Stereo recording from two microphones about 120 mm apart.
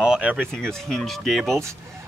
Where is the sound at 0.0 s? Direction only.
10° right (ahead or behind).